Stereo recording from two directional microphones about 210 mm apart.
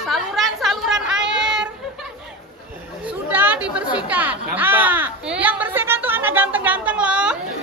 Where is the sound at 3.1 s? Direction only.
10° right (ahead or behind).